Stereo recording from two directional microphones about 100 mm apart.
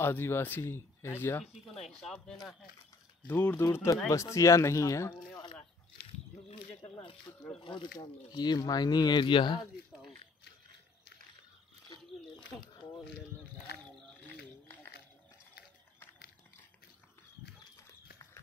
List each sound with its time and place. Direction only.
0.0 s speech: 20° left (ahead or behind)
1.9 s speech: 5° left (ahead or behind)
3.3 s speech: 20° left (ahead or behind)
3.6 s speech: 30° left (ahead or behind)
6.8 s speech: 60° left (ahead or behind)
14.2 s a sound: 20° left (ahead or behind)
17.7 s horse: 30° left (ahead or behind)